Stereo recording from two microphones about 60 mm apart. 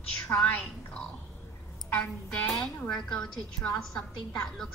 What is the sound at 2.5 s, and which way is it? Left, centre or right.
A woman's voice, centre.